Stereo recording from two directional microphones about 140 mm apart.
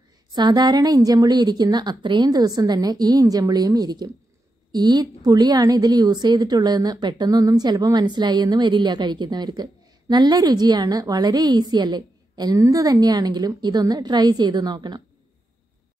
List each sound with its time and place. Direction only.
0.3 s a woman's voice: 30° right (ahead or behind)